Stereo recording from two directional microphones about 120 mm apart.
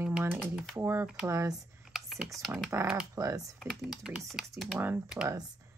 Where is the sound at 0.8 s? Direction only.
20° right (ahead or behind).